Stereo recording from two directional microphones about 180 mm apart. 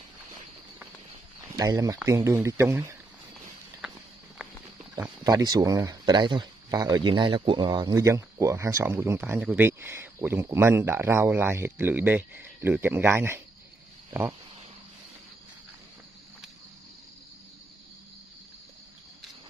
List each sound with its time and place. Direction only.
1.6 s speech: 20° right (ahead or behind)
4.4 s a sound: 5° right (ahead or behind)
5.2 s speech: 20° right (ahead or behind)